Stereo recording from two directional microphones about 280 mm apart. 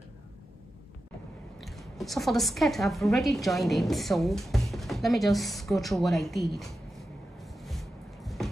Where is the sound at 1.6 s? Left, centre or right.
Centre.